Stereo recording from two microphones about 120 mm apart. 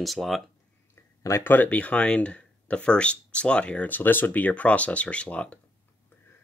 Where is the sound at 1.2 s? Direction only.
20° left (ahead or behind).